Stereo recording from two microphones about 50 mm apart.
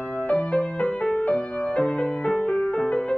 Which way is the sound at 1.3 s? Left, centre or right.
Centre.